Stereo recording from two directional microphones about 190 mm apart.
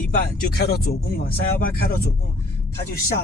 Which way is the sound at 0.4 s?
55° left (ahead or behind).